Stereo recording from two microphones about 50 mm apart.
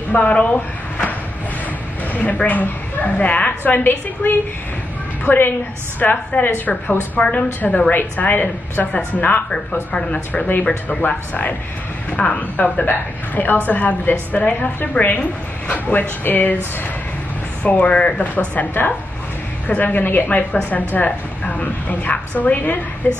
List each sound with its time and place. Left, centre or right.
0.2 s a woman's voice: left
2.4 s a woman's voice: left
14.8 s a woman's voice: left
17.6 s a woman's voice: left